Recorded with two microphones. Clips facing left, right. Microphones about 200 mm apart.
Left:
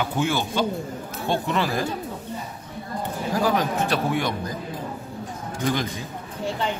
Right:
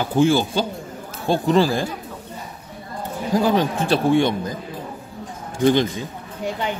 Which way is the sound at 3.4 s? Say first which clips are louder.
Right 3 dB; 30° right (ahead or behind).